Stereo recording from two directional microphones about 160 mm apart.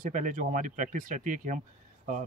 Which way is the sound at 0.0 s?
55° right (ahead or behind).